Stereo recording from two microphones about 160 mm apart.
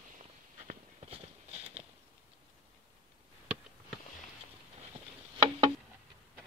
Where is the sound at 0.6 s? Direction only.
40° right (ahead or behind).